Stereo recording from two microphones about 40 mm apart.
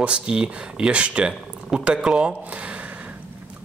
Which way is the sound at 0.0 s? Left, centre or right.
Right.